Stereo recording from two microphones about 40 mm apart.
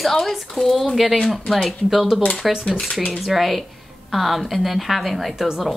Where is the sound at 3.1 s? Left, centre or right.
Centre.